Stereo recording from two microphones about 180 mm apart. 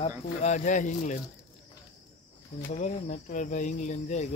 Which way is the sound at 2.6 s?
40° left (ahead or behind).